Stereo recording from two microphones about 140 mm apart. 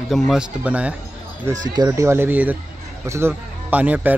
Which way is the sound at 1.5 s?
20° right (ahead or behind).